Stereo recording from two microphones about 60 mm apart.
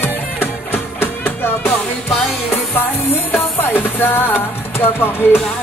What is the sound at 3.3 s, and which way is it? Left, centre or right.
Music, left.